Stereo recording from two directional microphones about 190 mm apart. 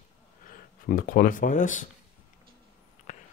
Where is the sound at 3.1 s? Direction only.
40° left (ahead or behind).